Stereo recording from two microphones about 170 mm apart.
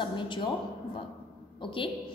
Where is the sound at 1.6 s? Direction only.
30° left (ahead or behind).